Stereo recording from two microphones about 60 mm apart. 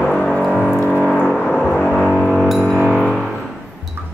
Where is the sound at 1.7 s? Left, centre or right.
Centre.